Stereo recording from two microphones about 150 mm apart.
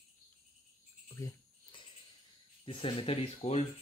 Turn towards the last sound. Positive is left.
turn(degrees=40)  # may be behind; listen again after turning